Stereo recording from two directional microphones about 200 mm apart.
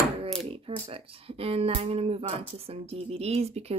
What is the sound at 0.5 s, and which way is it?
Speech, 25° right (ahead or behind).